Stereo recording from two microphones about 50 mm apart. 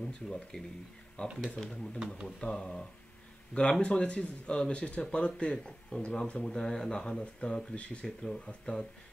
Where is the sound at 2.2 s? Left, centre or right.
Centre.